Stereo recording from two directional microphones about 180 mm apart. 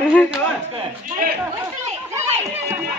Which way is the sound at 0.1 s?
Centre (ahead or behind).